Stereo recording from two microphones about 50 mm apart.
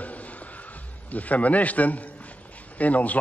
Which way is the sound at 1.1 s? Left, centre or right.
Left.